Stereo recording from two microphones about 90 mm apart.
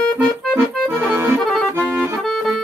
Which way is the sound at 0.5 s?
25° right (ahead or behind).